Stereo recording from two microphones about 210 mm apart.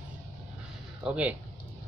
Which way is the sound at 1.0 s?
5° right (ahead or behind).